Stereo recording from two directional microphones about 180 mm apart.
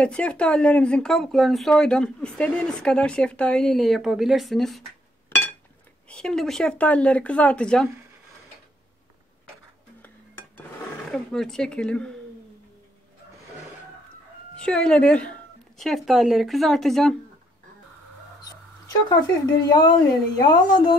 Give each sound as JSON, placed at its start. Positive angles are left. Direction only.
{"t": 0.0, "sound": "speech", "side_deg": 5}
{"t": 6.0, "sound": "speech", "side_deg": 5}
{"t": 11.1, "sound": "speech", "side_deg": 0}
{"t": 14.6, "sound": "a woman's voice", "side_deg": 5}
{"t": 19.7, "sound": "speech", "side_deg": 25}